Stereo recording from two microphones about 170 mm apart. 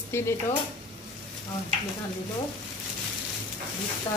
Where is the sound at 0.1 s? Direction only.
15° left (ahead or behind).